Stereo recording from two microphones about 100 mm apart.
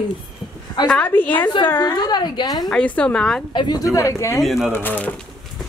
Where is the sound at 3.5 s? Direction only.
50° left (ahead or behind).